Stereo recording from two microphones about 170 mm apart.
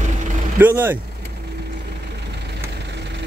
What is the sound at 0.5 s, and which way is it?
Speech, 10° right (ahead or behind).